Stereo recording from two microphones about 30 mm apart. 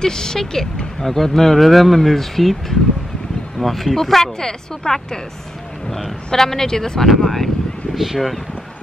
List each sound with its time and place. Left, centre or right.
0.0 s speech: left
5.9 s speech: centre
6.3 s speech: centre
7.9 s speech: centre